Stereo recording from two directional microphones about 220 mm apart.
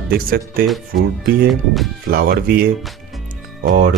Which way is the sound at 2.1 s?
40° right (ahead or behind).